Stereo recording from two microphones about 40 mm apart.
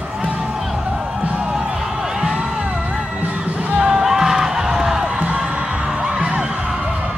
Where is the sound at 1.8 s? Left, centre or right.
Centre.